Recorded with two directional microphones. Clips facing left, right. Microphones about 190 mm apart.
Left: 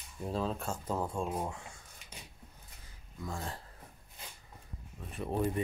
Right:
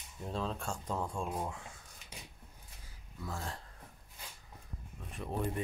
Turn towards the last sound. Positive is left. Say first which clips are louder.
# left 4 dB
turn(degrees=5)  # may be behind; listen again after turning